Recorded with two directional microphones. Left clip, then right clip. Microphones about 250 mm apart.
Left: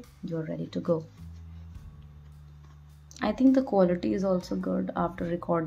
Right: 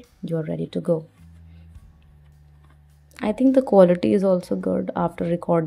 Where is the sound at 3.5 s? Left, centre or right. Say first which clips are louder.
Right 12 dB; right.